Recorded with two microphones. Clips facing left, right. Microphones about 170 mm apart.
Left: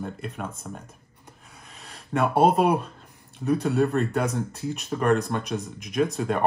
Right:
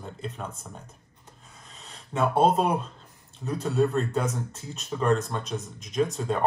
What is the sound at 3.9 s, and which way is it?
Speech, 65° left (ahead or behind).